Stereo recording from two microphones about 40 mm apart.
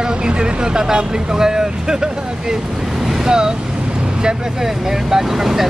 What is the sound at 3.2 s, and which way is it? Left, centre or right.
Speech, centre.